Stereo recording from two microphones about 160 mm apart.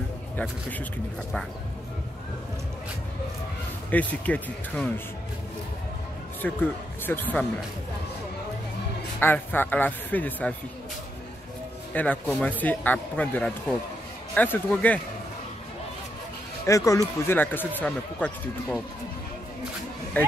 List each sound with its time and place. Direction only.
0.4 s speech: 10° left (ahead or behind)
3.9 s speech: 10° left (ahead or behind)
6.4 s speech: 10° left (ahead or behind)
9.2 s speech: 10° left (ahead or behind)
11.9 s speech: 10° left (ahead or behind)
16.6 s speech: 20° left (ahead or behind)